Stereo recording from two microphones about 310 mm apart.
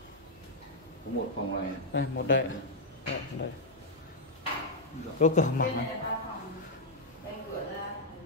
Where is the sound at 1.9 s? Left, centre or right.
Left.